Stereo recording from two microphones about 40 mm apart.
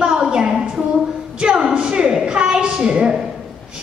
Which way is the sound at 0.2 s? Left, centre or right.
Centre.